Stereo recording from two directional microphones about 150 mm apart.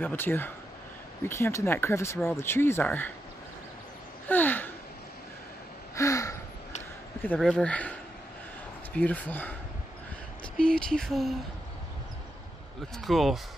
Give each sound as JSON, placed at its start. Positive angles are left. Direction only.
{"t": 0.0, "sound": "speech", "side_deg": 15}
{"t": 4.3, "sound": "gasp", "side_deg": 10}
{"t": 5.9, "sound": "gasp", "side_deg": 20}
{"t": 7.3, "sound": "speech", "side_deg": 5}
{"t": 8.9, "sound": "speech", "side_deg": 10}
{"t": 10.6, "sound": "speech", "side_deg": 5}
{"t": 12.9, "sound": "speech", "side_deg": 0}